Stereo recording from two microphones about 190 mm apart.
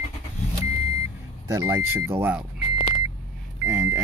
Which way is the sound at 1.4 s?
15° right (ahead or behind).